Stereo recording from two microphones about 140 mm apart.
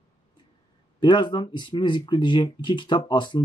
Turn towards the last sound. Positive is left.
turn(degrees=30)  # may be behind; listen again after turning